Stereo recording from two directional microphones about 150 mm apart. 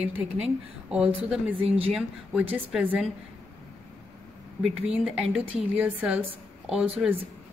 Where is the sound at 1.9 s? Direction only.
10° right (ahead or behind).